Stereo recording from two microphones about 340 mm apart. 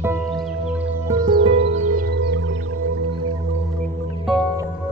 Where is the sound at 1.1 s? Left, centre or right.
Centre.